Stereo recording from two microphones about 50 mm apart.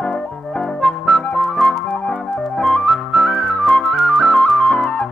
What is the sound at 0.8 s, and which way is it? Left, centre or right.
Music, centre.